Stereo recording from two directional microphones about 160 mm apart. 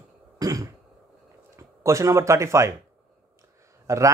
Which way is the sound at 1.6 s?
20° right (ahead or behind).